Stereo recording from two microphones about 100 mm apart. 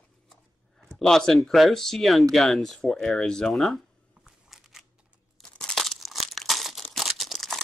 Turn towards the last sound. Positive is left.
turn(degrees=0)  # may be behind; listen again after turning